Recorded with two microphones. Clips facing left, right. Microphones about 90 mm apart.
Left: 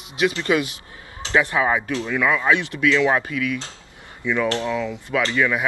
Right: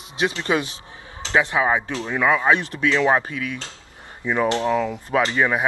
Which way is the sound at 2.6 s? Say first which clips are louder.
Left 1 dB; 40° right (ahead or behind).